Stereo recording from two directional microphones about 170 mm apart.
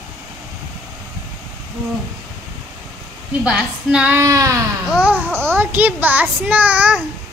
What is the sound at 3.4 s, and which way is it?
A child's voice, 5° right (ahead or behind).